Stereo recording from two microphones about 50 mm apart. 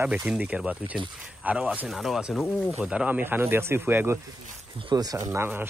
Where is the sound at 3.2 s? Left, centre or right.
Right.